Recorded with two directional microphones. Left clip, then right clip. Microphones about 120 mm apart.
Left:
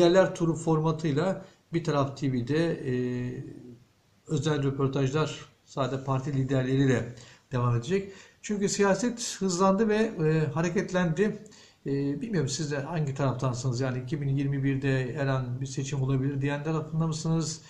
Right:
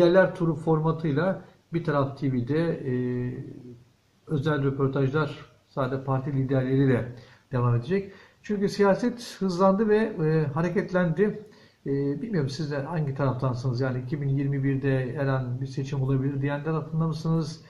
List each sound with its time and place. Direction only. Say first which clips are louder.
0.0 s speech: right 2 dB; 20° left (ahead or behind)
4.3 s speech: right 2 dB; 25° left (ahead or behind)